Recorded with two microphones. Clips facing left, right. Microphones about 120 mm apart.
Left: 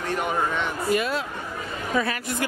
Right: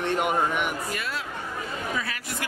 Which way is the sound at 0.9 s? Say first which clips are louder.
Left 8 dB; 20° left (ahead or behind).